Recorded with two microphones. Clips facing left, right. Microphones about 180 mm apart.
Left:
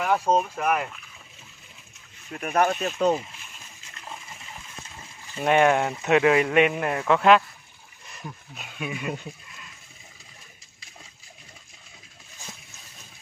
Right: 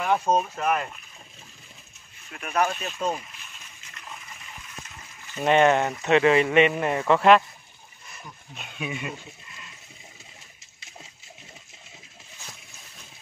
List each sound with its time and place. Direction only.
0.0 s speech: 10° left (ahead or behind)
2.3 s speech: 40° left (ahead or behind)
5.4 s a man's voice: 5° left (ahead or behind)
8.5 s a man's voice: centre (ahead or behind)